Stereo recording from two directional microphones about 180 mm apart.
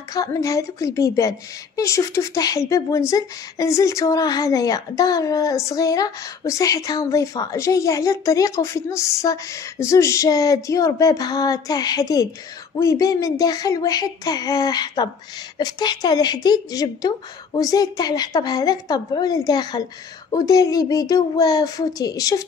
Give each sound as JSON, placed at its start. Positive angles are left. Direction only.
{"t": 0.1, "sound": "speech", "side_deg": 20}